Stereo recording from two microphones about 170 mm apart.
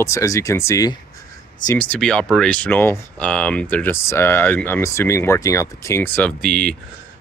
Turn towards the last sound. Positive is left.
turn(degrees=-60)  # may be behind; listen again after turning